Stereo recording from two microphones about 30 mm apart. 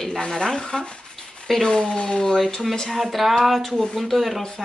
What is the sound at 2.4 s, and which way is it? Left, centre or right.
Speech, centre.